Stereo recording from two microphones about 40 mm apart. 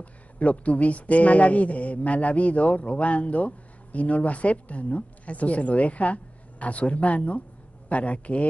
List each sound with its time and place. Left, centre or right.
0.0 s speech: left